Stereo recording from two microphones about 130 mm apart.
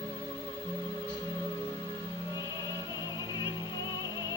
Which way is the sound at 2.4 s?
25° right (ahead or behind).